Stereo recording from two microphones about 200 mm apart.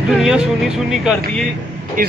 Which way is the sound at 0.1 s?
Centre (ahead or behind).